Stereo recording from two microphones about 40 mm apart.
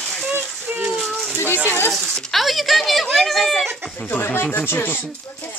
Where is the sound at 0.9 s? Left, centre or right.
Centre.